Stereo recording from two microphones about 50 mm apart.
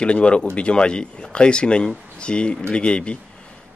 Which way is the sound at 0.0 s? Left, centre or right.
Left.